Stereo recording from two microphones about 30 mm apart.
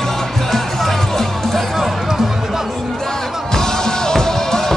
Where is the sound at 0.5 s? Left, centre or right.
Centre.